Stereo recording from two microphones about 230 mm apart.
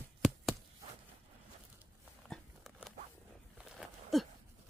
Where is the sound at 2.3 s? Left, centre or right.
Centre.